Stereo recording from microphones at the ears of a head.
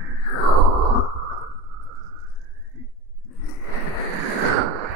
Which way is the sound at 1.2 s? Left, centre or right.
Right.